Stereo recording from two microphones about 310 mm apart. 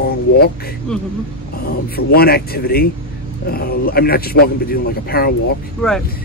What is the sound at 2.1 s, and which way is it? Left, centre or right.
A man's voice, left.